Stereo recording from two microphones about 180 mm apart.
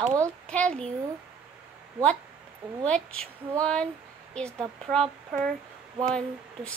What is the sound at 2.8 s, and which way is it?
A woman's voice, 5° left (ahead or behind).